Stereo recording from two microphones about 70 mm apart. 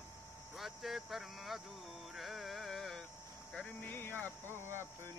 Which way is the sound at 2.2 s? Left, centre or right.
Centre.